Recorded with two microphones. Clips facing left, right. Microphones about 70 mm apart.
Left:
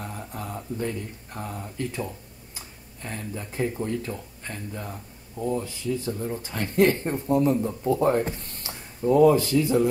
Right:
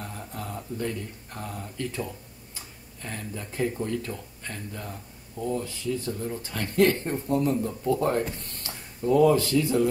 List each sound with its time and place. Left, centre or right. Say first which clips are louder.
0.0 s speech: left 2 dB; centre